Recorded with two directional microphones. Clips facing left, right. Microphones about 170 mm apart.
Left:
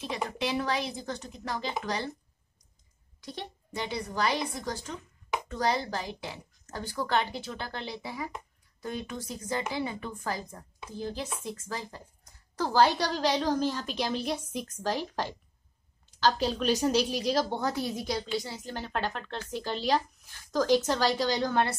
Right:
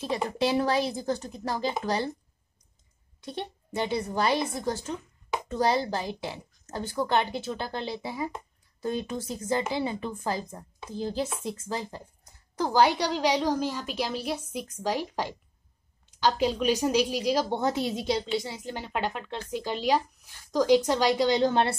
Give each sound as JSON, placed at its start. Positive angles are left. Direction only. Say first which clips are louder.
{"t": 0.4, "sound": "a woman's voice", "louder": "right 6 dB", "side_deg": -35}
{"t": 3.9, "sound": "a woman's voice", "louder": "right 3 dB", "side_deg": -25}
{"t": 12.5, "sound": "a woman's voice", "louder": "right 1 dB", "side_deg": -15}
{"t": 17.6, "sound": "a woman's voice", "louder": "right 3 dB", "side_deg": -20}